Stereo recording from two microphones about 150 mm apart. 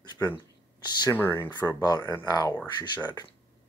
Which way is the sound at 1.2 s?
15° left (ahead or behind).